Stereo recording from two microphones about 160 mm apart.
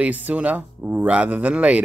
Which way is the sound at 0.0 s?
10° right (ahead or behind).